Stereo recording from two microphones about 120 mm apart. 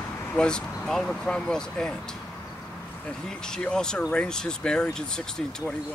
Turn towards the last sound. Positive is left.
turn(degrees=5)  # may be behind; listen again after turning